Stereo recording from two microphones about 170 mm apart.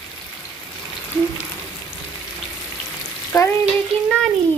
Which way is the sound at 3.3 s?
15° left (ahead or behind).